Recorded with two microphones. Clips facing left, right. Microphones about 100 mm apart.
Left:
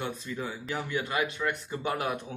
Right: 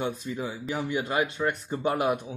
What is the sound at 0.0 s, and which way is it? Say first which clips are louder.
Speech: right 4 dB; 15° right (ahead or behind).